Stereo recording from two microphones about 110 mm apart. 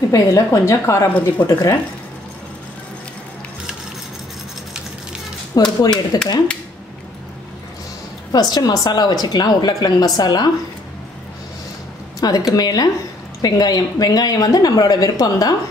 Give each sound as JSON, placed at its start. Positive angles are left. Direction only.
{"t": 0.1, "sound": "speech", "side_deg": 30}
{"t": 5.5, "sound": "speech", "side_deg": 35}
{"t": 8.3, "sound": "speech", "side_deg": 35}
{"t": 12.2, "sound": "speech", "side_deg": 35}